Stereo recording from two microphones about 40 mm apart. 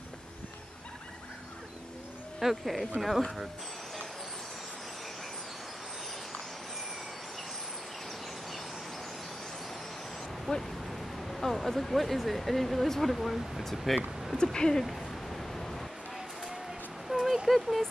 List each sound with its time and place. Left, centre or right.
2.4 s speech: centre
10.5 s speech: centre
14.3 s speech: centre
14.9 s a sound: centre
17.1 s a sound: centre
17.5 s speech: centre